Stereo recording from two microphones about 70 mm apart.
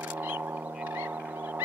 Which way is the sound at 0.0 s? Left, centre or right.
Right.